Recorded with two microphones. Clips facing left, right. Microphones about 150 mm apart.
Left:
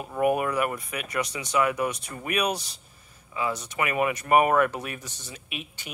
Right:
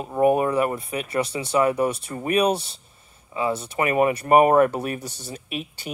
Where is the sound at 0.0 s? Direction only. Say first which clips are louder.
Right 5 dB; 30° right (ahead or behind).